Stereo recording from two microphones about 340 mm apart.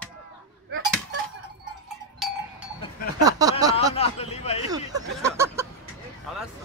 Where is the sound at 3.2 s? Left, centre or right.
Centre.